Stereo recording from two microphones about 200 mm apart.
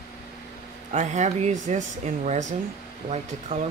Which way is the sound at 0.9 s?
35° right (ahead or behind).